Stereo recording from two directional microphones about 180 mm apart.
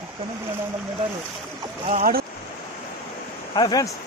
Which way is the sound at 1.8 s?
50° right (ahead or behind).